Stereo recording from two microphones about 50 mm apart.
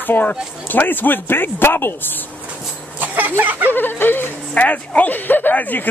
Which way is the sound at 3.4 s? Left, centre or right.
Right.